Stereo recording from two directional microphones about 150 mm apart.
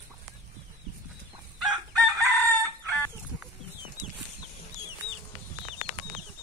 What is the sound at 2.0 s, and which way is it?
Chicken, 20° right (ahead or behind).